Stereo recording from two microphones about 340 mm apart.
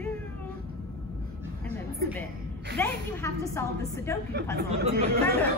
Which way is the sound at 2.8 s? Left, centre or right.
Centre.